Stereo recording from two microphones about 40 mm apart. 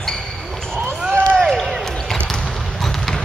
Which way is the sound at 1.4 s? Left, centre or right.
Centre.